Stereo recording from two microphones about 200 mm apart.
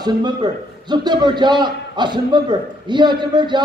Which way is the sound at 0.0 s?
20° right (ahead or behind).